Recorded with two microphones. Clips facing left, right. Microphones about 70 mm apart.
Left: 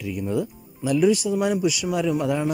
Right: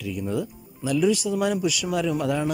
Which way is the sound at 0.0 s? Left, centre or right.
Left.